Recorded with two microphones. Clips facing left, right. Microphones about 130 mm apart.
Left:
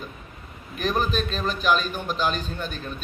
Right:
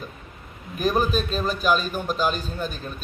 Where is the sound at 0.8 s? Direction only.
5° right (ahead or behind).